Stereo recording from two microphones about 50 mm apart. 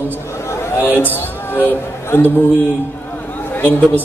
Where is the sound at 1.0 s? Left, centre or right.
Left.